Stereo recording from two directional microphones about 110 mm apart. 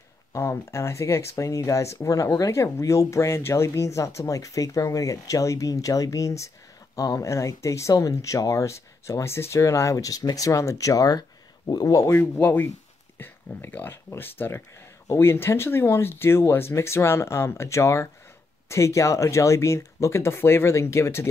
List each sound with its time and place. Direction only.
0.3 s speech: 25° left (ahead or behind)